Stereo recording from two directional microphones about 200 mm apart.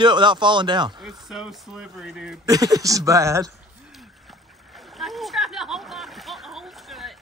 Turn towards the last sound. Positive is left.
turn(degrees=0)  # may be behind; listen again after turning